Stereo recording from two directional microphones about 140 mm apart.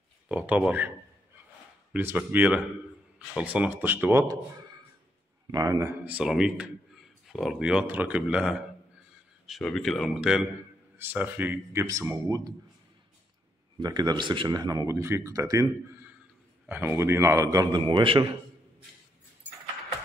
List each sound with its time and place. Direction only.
0.3 s a man's voice: 10° right (ahead or behind)
5.5 s speech: 25° right (ahead or behind)
6.0 s a man's voice: 5° right (ahead or behind)
9.6 s speech: 5° left (ahead or behind)
11.0 s a man's voice: 15° right (ahead or behind)
13.7 s speech: 30° right (ahead or behind)
16.6 s speech: 15° right (ahead or behind); by 18.3 s 35° right (ahead or behind)